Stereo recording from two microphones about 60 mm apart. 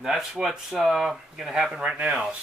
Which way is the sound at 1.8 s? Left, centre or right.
Centre.